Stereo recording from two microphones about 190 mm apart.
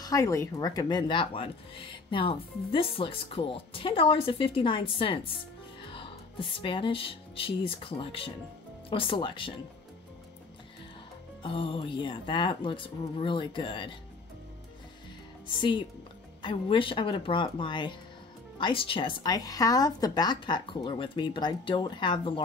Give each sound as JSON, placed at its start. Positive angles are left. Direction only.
{"t": 0.0, "sound": "speech", "side_deg": 15}
{"t": 11.4, "sound": "speech", "side_deg": 30}
{"t": 15.4, "sound": "speech", "side_deg": 25}